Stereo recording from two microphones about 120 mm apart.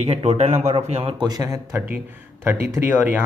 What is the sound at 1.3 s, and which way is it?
Speech, 30° right (ahead or behind).